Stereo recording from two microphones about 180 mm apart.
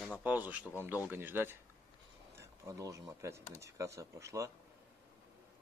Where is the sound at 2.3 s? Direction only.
15° right (ahead or behind).